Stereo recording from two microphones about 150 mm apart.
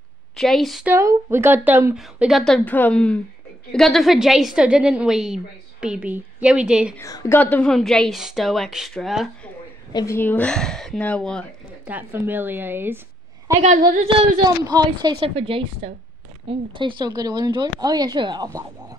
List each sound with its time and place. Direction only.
0.4 s a woman's voice: centre (ahead or behind)
0.8 s a woman's voice: 15° right (ahead or behind)
2.0 s a woman's voice: 5° right (ahead or behind)
7.0 s a woman's voice: 20° left (ahead or behind)
7.3 s a woman's voice: 10° left (ahead or behind)
9.9 s speech: 15° left (ahead or behind)
11.8 s a woman's voice: 10° right (ahead or behind)
13.6 s a woman's voice: 55° right (ahead or behind)
14.0 s a woman's voice: 30° right (ahead or behind)